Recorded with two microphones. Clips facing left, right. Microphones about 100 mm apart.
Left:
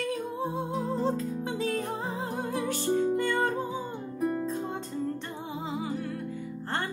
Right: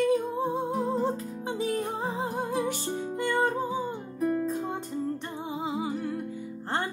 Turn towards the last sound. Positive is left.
turn(degrees=-15)  # may be behind; listen again after turning